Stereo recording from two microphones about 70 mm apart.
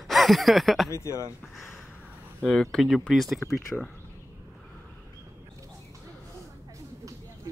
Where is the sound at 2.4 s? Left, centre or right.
Centre.